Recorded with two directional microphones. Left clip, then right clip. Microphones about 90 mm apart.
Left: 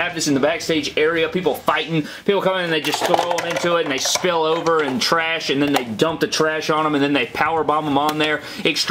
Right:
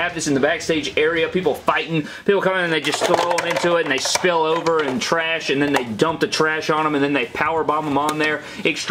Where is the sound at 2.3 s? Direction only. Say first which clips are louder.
Left 1 dB; 15° left (ahead or behind).